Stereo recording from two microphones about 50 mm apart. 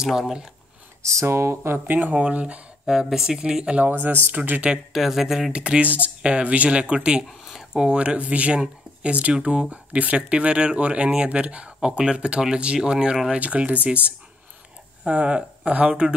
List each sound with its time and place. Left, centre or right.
0.0 s speech: centre
1.2 s speech: right
1.9 s speech: right
2.9 s speech: centre
3.8 s speech: right
4.9 s speech: centre
5.5 s speech: right
7.2 s a sound: centre
7.7 s speech: centre
13.3 s speech: right
15.0 s speech: right